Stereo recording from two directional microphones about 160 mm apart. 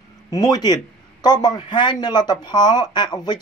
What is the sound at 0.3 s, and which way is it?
Speech, 25° left (ahead or behind).